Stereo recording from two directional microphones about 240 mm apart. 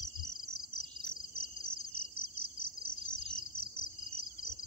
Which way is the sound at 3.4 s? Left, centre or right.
Left.